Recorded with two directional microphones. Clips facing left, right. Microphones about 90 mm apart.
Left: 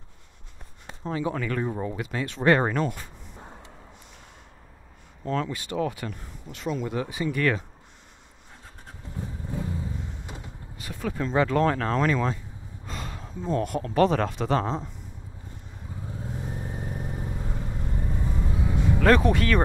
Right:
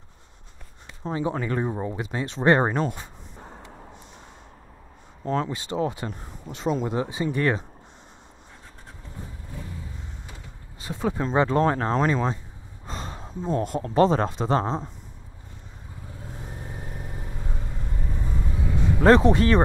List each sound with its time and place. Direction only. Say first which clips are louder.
1.0 s speech: right 1 dB; 30° right (ahead or behind)
5.2 s speech: right 2 dB; 25° right (ahead or behind)
9.5 s vehicle: left 8 dB; 25° left (ahead or behind)
10.8 s speech: right 4 dB; 25° right (ahead or behind)
16.1 s vehicle: left 5 dB; 25° left (ahead or behind)
18.9 s speech: right 4 dB; 25° right (ahead or behind)